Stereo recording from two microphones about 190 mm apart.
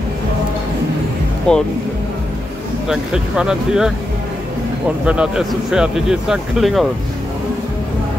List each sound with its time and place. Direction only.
1.5 s speech: 5° left (ahead or behind)
2.9 s speech: 5° right (ahead or behind)
5.0 s speech: 5° right (ahead or behind)